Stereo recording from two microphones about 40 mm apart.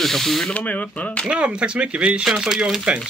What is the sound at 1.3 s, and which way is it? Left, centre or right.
Speech, right.